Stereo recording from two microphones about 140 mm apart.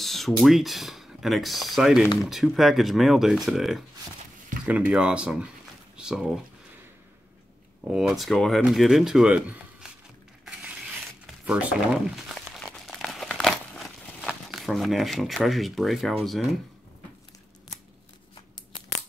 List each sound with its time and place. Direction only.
0.0 s speech: centre (ahead or behind)
7.9 s speech: centre (ahead or behind)
11.4 s crumpling: 5° right (ahead or behind)
18.3 s tearing: 35° left (ahead or behind)